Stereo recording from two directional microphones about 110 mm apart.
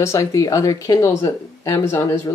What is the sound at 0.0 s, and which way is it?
Speech, 30° left (ahead or behind).